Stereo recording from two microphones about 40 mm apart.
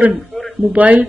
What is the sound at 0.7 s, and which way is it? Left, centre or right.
Speech, right.